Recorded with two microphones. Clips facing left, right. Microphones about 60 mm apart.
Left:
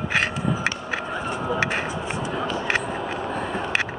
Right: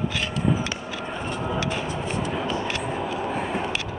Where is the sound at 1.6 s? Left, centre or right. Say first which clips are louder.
Left 3 dB; left.